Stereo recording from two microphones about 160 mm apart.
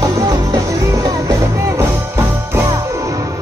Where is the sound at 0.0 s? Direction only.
20° right (ahead or behind).